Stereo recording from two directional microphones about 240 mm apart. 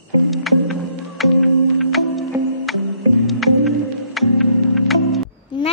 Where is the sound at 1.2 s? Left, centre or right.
Centre.